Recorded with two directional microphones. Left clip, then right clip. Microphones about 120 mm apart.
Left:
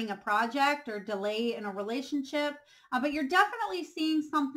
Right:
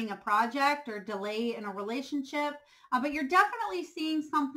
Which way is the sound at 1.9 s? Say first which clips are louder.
Left 1 dB; 25° right (ahead or behind).